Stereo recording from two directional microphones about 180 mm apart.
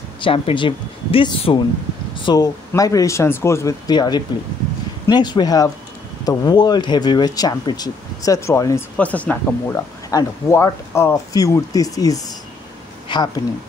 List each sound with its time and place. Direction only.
0.2 s speech: 30° left (ahead or behind)